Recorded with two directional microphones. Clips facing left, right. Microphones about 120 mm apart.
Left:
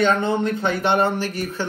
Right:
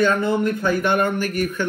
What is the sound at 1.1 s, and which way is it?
Speech, 50° right (ahead or behind).